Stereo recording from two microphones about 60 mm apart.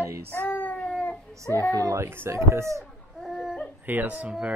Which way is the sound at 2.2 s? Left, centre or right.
Right.